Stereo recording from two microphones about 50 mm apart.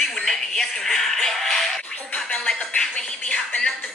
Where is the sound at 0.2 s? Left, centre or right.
Centre.